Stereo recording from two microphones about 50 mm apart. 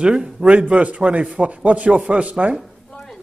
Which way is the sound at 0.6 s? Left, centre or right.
Right.